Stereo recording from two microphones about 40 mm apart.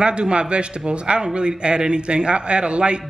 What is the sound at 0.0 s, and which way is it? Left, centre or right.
A man's voice, right.